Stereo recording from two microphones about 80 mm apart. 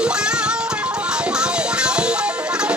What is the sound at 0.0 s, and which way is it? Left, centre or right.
Music, centre.